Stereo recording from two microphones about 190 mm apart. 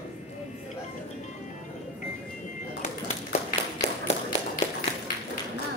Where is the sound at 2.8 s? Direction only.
40° left (ahead or behind).